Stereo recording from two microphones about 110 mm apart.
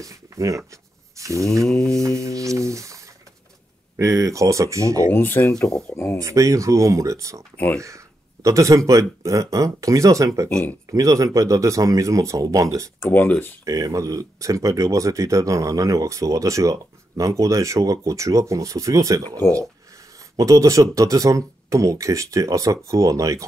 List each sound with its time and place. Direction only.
0.0 s speech: 30° right (ahead or behind)
1.1 s a sound: 30° right (ahead or behind)
1.6 s mantra: 5° left (ahead or behind)
2.0 s speech: 30° right (ahead or behind)
5.1 s speech: 20° left (ahead or behind)
5.5 s mantra: 5° left (ahead or behind)
6.1 s speech: 30° right (ahead or behind)
7.5 s speech: 15° left (ahead or behind)
7.8 s speech: 30° right (ahead or behind)
10.5 s speech: 15° left (ahead or behind)
10.9 s speech: 30° right (ahead or behind)
13.0 s speech: 15° left (ahead or behind)
13.7 s speech: 30° right (ahead or behind)
20.3 s speech: 30° right (ahead or behind)